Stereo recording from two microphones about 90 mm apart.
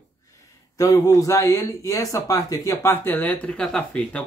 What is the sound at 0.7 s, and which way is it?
Speech, 40° left (ahead or behind).